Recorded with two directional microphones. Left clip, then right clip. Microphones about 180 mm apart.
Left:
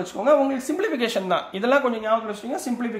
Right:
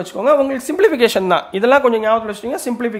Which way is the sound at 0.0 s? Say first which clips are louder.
Right 5 dB; 45° right (ahead or behind).